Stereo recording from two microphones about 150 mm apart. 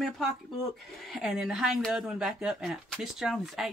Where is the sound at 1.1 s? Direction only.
5° right (ahead or behind).